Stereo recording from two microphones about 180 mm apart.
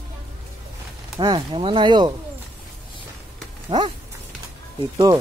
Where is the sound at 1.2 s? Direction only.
25° right (ahead or behind).